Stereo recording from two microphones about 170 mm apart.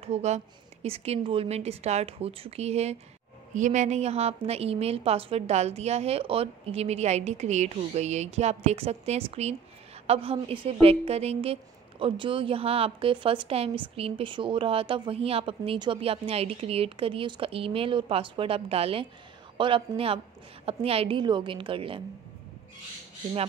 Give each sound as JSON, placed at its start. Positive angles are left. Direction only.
{"t": 0.0, "sound": "a woman's voice", "side_deg": -40}